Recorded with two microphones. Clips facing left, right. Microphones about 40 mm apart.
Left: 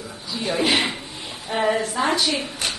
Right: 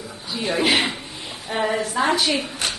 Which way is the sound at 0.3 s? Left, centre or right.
Right.